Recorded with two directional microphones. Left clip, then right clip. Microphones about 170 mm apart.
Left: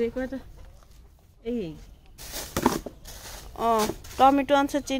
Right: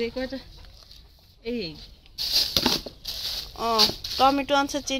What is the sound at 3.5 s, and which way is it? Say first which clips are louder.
Speech: right 1 dB; 25° left (ahead or behind).